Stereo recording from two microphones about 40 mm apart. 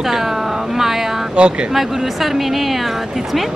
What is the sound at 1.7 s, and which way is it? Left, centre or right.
Speech, centre.